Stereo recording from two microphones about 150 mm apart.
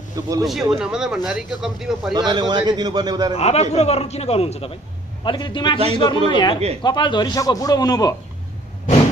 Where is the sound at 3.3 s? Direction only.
45° left (ahead or behind); by 8.2 s 25° left (ahead or behind).